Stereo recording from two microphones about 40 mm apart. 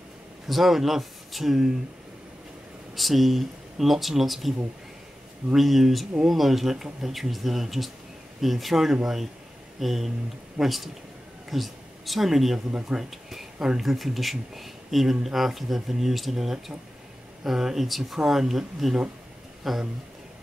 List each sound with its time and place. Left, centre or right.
0.5 s speech: centre
3.0 s speech: centre
5.6 s speech: centre
12.5 s speech: right
13.1 s a sound: centre
13.7 s speech: centre